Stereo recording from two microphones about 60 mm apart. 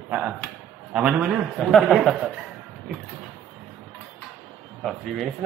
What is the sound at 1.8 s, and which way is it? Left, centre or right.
Speech, centre.